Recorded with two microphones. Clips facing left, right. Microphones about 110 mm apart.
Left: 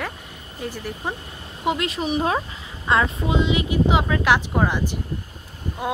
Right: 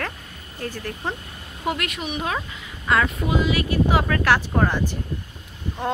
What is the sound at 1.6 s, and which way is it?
Speech, 25° left (ahead or behind).